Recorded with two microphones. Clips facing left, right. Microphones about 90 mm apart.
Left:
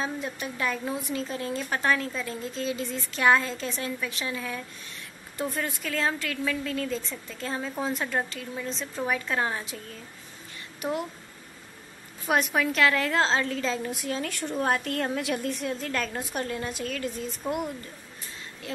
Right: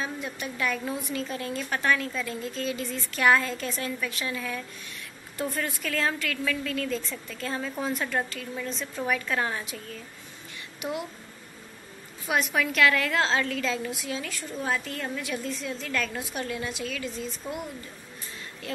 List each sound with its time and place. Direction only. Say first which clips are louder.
0.0 s speech: left 2 dB; 30° left (ahead or behind)
10.8 s a woman's voice: left 2 dB; 40° left (ahead or behind)
12.5 s speech: right 3 dB; 30° left (ahead or behind)
13.8 s a woman's voice: left 2 dB; 50° left (ahead or behind)
14.6 s a woman's voice: left 4 dB; 60° left (ahead or behind)
15.6 s a woman's voice: left 1 dB; 40° left (ahead or behind)